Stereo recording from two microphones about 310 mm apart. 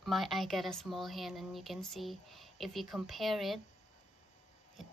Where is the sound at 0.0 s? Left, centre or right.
Centre.